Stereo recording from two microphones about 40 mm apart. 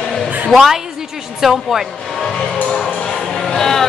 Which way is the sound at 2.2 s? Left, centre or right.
Centre.